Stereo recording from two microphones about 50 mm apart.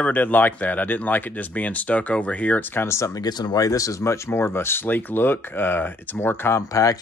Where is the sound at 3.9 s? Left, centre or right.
Left.